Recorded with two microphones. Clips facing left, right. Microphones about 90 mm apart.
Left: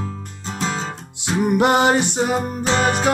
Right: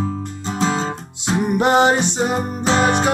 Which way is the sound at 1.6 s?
60° left (ahead or behind).